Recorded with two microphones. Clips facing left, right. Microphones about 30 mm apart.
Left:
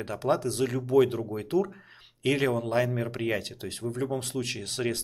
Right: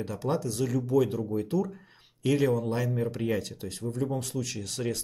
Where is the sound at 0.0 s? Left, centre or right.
Left.